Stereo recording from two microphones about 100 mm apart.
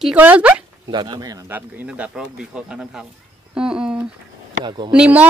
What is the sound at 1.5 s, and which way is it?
Speech, 20° right (ahead or behind).